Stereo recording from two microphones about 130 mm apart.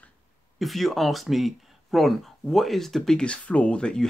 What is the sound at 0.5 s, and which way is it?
Speech, centre (ahead or behind).